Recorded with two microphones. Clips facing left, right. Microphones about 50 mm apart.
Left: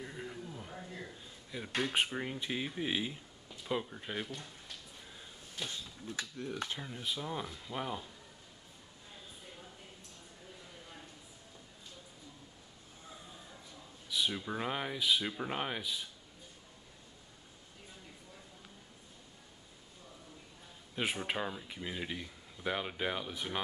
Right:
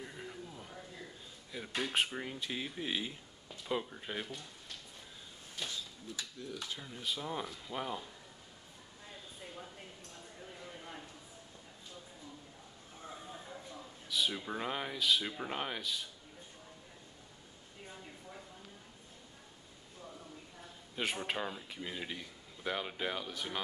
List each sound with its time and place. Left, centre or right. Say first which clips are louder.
0.0 s a sound: left 2 dB; centre
1.5 s speech: left 1 dB; centre
5.7 s speech: left 1 dB; left
6.8 s speech: left 1 dB; centre
13.1 s a sound: right 5 dB; right
14.0 s speech: even; centre
20.9 s speech: left 1 dB; centre